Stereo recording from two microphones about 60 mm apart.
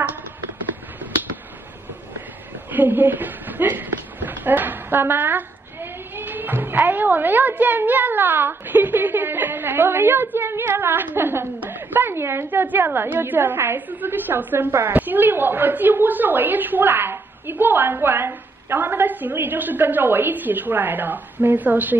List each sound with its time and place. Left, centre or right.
2.7 s a woman's voice: right